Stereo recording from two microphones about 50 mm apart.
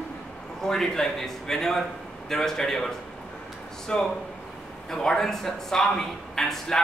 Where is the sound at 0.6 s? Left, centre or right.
Centre.